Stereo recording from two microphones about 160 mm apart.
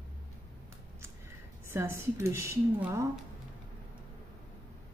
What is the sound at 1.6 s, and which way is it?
Speech, 15° right (ahead or behind).